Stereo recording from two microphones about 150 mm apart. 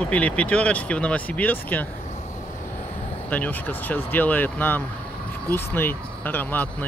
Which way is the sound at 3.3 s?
10° left (ahead or behind).